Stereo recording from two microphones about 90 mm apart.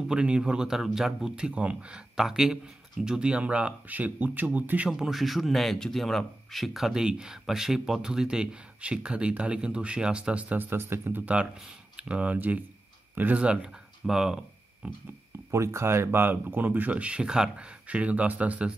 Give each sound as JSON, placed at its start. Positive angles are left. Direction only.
{"t": 0.1, "sound": "speech", "side_deg": -10}
{"t": 15.5, "sound": "speech", "side_deg": -30}